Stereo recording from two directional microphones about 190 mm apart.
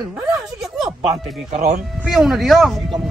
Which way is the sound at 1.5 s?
50° right (ahead or behind).